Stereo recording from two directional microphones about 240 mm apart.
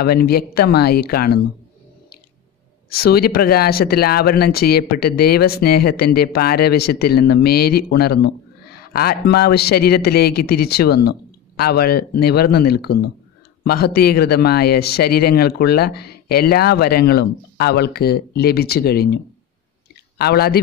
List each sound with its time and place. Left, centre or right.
0.0 s speech: left
3.0 s speech: left
20.2 s speech: left